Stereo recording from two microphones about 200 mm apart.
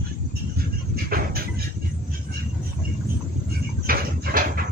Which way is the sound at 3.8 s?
45° right (ahead or behind).